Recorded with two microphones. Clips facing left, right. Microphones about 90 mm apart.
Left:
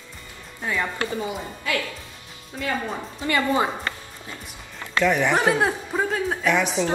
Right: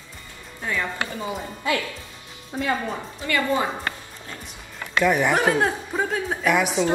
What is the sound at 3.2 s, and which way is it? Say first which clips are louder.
Speech: left 1 dB; 25° left (ahead or behind).